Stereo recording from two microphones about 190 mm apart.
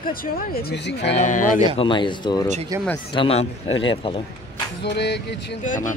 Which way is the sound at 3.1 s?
30° left (ahead or behind).